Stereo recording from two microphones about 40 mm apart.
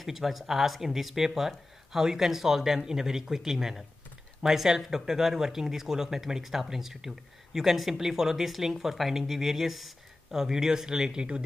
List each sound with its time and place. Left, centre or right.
0.0 s speech: centre; by 11.4 s right